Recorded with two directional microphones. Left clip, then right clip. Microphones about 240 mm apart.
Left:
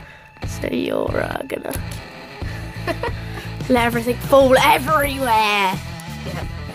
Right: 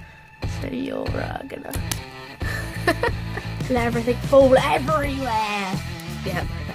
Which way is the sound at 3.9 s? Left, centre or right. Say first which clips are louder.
Left 3 dB; left.